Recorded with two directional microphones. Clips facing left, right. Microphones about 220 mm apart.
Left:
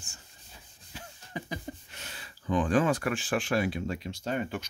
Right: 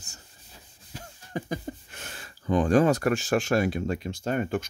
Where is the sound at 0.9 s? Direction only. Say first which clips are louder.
Right 5 dB; 45° right (ahead or behind).